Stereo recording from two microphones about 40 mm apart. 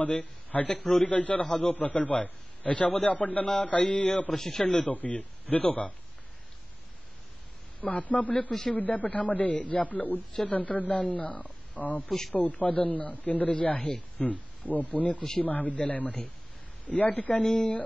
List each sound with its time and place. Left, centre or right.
0.0 s a man's voice: left
4.3 s a man's voice: centre
4.6 s a man's voice: left
7.8 s a man's voice: left
8.7 s a man's voice: left